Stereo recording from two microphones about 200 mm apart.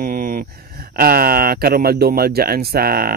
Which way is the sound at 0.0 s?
45° right (ahead or behind).